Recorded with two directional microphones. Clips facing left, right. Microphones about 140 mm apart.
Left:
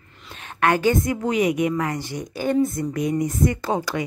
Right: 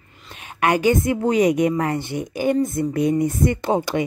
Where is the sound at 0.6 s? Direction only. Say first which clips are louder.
Right 1 dB; 15° right (ahead or behind).